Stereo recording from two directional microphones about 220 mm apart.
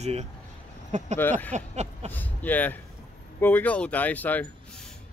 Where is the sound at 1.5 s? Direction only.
30° right (ahead or behind).